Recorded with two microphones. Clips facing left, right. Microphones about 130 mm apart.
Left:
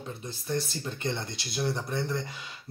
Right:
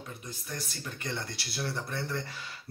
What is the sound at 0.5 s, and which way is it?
Speech, 25° left (ahead or behind).